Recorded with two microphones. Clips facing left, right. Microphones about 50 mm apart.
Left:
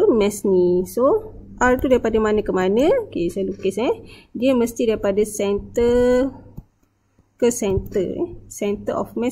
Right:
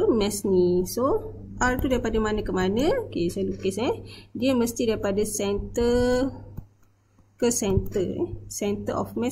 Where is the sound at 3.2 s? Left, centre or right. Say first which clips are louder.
Left 4 dB; centre.